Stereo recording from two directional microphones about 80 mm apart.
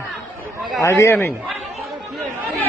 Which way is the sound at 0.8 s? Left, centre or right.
Left.